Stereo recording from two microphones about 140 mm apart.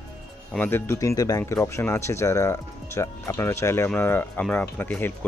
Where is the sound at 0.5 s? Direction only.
15° left (ahead or behind).